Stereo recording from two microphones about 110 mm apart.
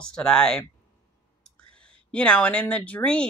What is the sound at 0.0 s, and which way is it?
Speech, 5° left (ahead or behind).